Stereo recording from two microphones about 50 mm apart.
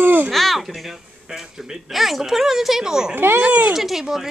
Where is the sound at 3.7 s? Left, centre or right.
Centre.